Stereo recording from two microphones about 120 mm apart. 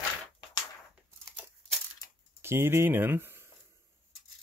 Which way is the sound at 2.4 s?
20° right (ahead or behind).